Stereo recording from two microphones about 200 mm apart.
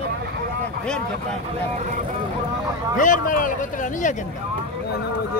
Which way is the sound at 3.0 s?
40° left (ahead or behind).